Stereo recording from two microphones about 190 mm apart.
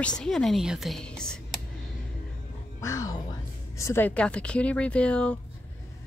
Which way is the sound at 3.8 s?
15° left (ahead or behind).